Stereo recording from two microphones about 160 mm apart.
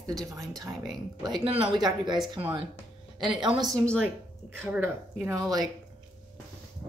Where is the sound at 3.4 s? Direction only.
25° right (ahead or behind).